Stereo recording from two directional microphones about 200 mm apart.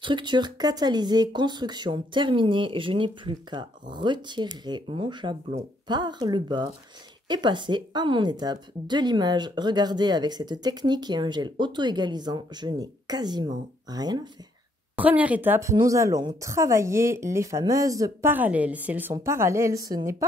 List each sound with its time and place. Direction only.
0.0 s speech: 25° right (ahead or behind)
15.0 s a woman's voice: 10° right (ahead or behind)